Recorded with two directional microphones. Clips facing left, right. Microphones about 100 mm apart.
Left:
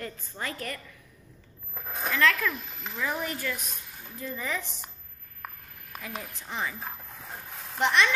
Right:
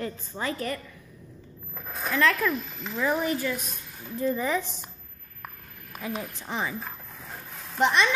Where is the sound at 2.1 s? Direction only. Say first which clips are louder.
Right 2 dB; 30° right (ahead or behind).